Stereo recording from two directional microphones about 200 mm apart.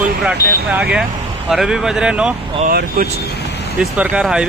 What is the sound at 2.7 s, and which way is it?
Speech, 50° right (ahead or behind).